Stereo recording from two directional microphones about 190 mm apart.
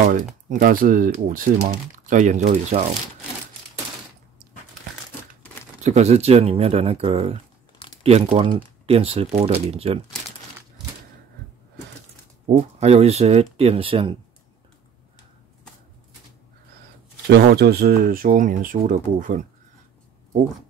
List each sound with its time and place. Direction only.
0.5 s speech: 45° right (ahead or behind)
5.9 s speech: 35° right (ahead or behind)
12.5 s speech: 35° right (ahead or behind)
17.3 s speech: 55° right (ahead or behind)